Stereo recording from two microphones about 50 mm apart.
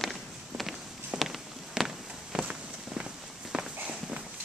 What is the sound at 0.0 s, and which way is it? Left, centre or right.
Walk, centre.